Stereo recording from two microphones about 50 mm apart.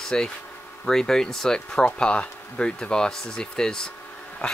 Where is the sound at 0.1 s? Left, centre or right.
Centre.